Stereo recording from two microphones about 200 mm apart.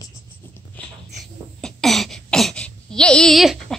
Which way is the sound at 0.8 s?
10° left (ahead or behind).